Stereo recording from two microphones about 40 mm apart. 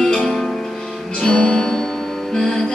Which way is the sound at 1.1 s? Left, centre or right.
Left.